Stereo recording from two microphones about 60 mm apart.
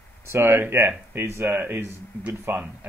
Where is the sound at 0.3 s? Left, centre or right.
Right.